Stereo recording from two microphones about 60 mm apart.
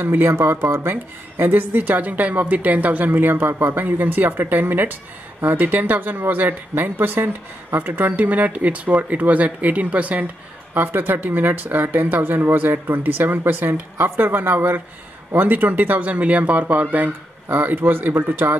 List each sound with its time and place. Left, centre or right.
0.0 s speech: right
10.7 s speech: right